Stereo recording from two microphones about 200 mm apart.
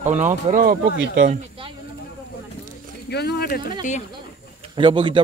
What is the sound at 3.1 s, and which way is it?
Speech, 55° left (ahead or behind).